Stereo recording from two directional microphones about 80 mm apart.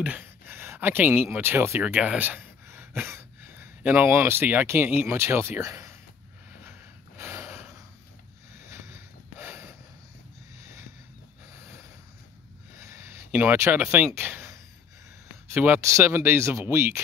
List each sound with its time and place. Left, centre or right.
0.0 s speech: right
1.8 s speech: centre; by 5.9 s right
6.6 s a sound: right
12.7 s a sound: right
14.1 s speech: right
15.5 s speech: right
15.8 s speech: right